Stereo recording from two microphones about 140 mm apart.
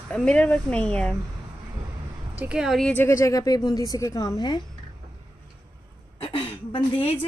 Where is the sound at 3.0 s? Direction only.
20° left (ahead or behind).